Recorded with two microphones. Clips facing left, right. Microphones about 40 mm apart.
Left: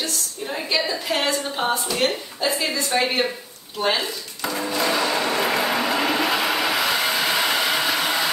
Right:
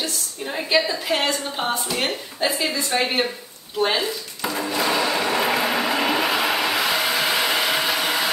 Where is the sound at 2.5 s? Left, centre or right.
Centre.